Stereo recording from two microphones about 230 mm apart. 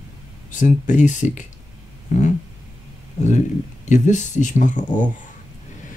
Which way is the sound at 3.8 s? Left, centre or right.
Left.